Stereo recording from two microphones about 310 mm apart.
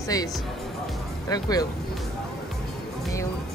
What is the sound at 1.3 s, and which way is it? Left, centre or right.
Speech, centre.